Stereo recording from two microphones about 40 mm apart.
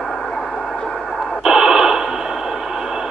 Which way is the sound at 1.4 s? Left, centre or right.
Centre.